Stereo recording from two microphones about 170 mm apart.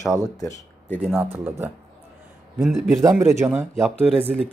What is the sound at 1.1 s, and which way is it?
A man's voice, 10° right (ahead or behind).